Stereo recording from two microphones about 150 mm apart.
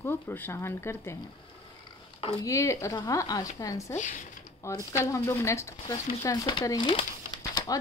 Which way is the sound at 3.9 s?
55° left (ahead or behind).